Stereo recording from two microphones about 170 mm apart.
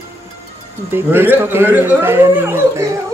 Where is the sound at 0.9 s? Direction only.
15° right (ahead or behind).